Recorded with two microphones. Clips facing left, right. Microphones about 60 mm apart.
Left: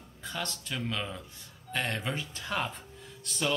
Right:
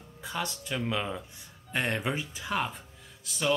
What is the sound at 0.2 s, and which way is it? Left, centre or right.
Speech, centre.